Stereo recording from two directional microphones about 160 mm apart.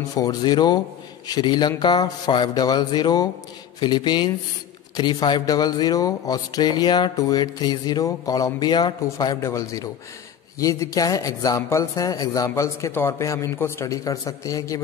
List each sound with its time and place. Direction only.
0.1 s speech: 25° left (ahead or behind)